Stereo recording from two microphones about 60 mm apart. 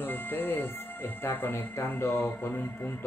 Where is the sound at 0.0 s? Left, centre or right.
Left.